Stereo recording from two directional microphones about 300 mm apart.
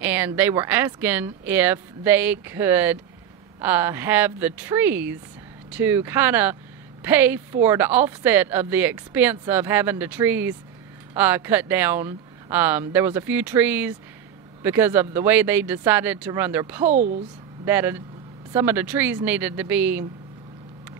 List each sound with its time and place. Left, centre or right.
0.0 s speech: centre
16.9 s a woman's voice: right
17.6 s speech: centre